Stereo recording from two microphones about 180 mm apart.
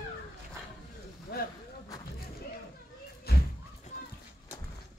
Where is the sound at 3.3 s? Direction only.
60° left (ahead or behind).